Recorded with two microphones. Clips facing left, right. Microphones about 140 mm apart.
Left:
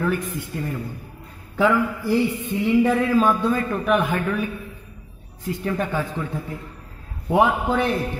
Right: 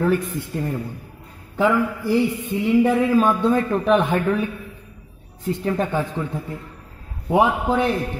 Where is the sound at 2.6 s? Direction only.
10° right (ahead or behind); by 4.4 s 30° right (ahead or behind).